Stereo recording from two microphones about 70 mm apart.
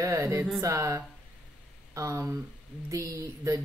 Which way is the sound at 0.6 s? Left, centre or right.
Right.